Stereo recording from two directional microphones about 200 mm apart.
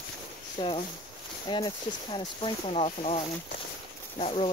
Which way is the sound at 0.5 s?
25° left (ahead or behind).